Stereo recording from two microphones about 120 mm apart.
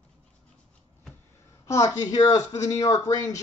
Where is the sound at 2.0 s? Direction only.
30° left (ahead or behind).